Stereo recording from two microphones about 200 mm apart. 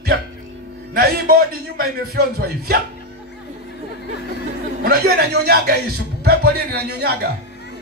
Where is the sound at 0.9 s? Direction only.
50° right (ahead or behind).